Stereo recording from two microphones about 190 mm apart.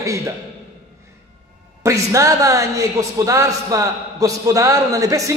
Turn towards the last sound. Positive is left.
turn(degrees=-15)  # may be behind; listen again after turning